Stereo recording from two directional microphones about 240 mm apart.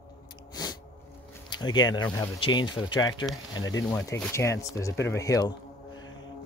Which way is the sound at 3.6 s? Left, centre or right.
Left.